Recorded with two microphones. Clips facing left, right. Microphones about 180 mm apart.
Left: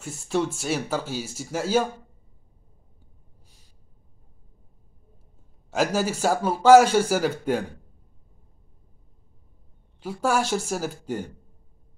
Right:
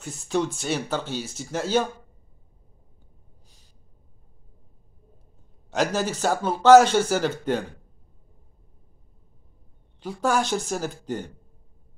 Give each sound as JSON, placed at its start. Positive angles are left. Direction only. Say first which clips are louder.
{"t": 0.0, "sound": "speech", "louder": "even", "side_deg": 5}
{"t": 5.7, "sound": "a man's voice", "louder": "left 1 dB", "side_deg": 5}
{"t": 9.9, "sound": "speech", "louder": "even", "side_deg": 5}